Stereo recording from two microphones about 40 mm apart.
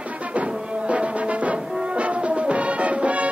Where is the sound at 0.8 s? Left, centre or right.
Right.